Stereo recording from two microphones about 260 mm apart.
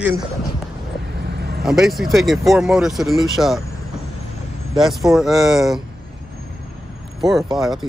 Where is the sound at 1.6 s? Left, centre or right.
Centre.